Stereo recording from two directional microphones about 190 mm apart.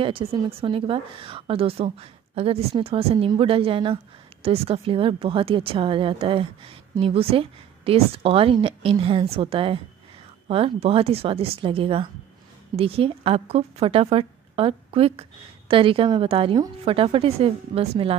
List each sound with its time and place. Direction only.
0.0 s a woman's voice: 25° right (ahead or behind)